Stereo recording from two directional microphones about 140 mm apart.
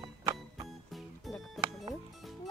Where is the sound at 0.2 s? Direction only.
25° right (ahead or behind).